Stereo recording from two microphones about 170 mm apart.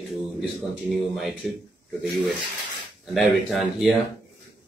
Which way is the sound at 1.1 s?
Centre (ahead or behind).